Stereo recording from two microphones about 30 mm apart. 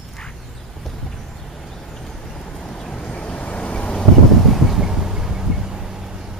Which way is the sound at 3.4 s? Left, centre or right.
Left.